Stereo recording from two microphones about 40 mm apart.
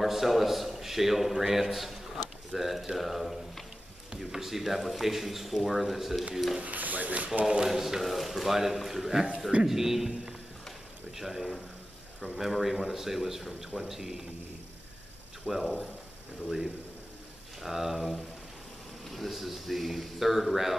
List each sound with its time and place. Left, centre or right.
0.0 s speech: centre
6.6 s speech: right
7.4 s speech: centre
15.4 s speech: centre